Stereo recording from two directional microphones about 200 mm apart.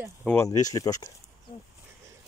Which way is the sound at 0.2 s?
10° left (ahead or behind).